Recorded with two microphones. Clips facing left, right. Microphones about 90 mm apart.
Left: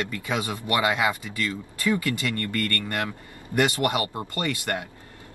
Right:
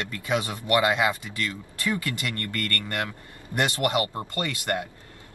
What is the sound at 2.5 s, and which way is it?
Speech, 20° left (ahead or behind).